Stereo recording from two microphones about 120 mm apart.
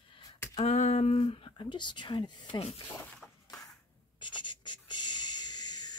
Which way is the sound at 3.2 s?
5° left (ahead or behind).